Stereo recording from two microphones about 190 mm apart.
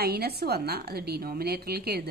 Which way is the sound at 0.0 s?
55° right (ahead or behind).